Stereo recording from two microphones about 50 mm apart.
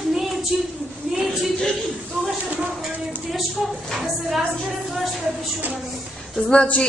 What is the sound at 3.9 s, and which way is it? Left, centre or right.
Speech, centre.